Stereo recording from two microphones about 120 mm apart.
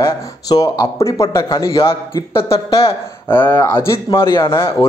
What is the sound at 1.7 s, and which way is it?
Speech, 50° left (ahead or behind).